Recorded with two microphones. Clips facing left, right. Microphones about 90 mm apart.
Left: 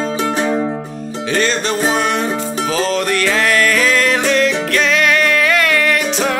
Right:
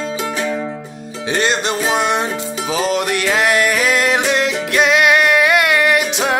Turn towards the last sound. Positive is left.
turn(degrees=-15)  # may be behind; listen again after turning